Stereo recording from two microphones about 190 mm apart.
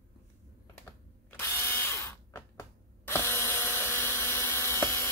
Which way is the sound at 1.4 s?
15° left (ahead or behind).